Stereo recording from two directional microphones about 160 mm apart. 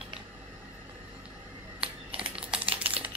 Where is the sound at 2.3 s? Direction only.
5° right (ahead or behind).